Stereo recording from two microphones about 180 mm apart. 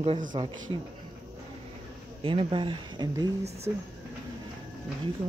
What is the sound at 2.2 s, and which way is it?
Speech, 30° right (ahead or behind).